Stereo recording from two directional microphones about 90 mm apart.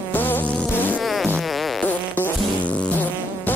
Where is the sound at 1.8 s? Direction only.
15° left (ahead or behind).